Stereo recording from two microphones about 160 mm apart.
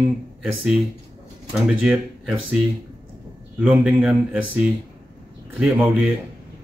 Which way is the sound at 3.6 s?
10° right (ahead or behind).